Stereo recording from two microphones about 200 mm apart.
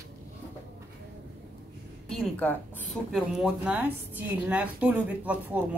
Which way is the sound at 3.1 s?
5° right (ahead or behind).